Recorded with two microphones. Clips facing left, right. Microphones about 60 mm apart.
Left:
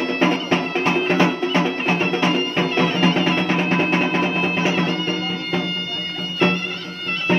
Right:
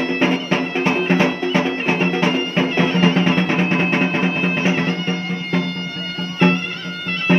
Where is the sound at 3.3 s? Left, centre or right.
Centre.